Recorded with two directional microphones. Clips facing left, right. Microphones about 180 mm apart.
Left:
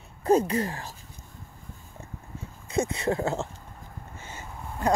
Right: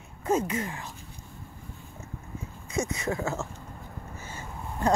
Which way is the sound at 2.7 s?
30° left (ahead or behind).